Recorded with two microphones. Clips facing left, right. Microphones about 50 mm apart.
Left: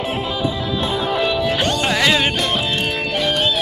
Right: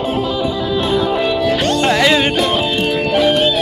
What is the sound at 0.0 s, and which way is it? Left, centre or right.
Music, left.